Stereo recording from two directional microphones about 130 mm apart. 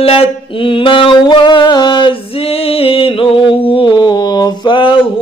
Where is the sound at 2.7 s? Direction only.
45° left (ahead or behind).